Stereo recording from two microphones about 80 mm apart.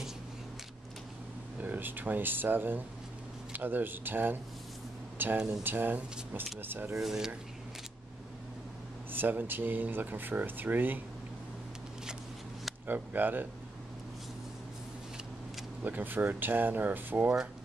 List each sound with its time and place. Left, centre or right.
1.6 s speech: right
7.0 s speech: centre
9.1 s speech: right
12.8 s speech: right
15.8 s speech: right